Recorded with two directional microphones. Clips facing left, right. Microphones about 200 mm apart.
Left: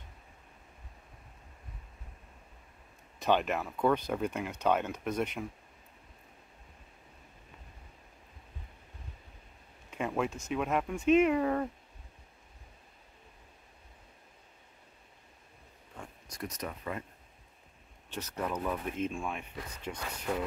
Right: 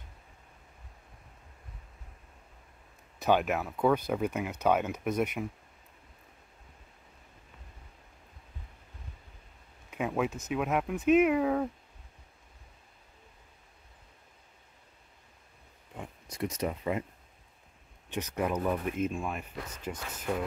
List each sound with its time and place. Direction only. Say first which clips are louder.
3.2 s speech: right 2 dB; 5° right (ahead or behind)
9.8 s speech: right 2 dB; 5° right (ahead or behind)
16.0 s a sound: right 6 dB; 25° right (ahead or behind)
18.1 s speech: right 4 dB; 15° right (ahead or behind)